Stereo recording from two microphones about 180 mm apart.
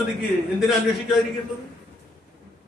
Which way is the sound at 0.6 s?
Centre (ahead or behind).